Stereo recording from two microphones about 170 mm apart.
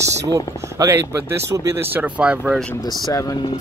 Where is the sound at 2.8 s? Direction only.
25° left (ahead or behind).